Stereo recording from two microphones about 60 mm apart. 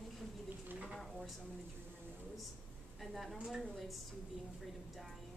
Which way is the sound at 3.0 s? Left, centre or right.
Centre.